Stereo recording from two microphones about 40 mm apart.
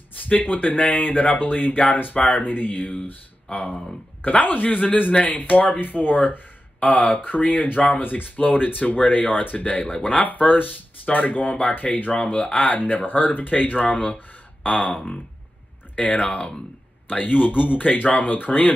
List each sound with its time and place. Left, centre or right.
0.2 s speech: left
2.5 s speech: left
9.7 s speech: left
16.0 s speech: left
17.1 s speech: left